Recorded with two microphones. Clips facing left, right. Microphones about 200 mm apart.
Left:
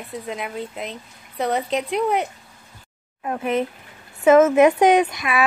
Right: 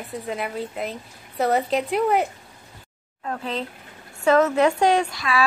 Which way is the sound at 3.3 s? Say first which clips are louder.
Left 6 dB; 20° left (ahead or behind).